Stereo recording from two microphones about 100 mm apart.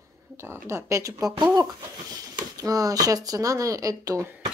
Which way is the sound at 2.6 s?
35° right (ahead or behind).